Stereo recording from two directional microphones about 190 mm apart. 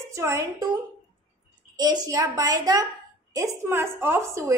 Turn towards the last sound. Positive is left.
turn(degrees=-15)  # may be behind; listen again after turning